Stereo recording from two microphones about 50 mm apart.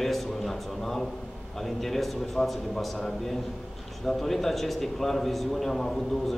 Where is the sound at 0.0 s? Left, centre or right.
Centre.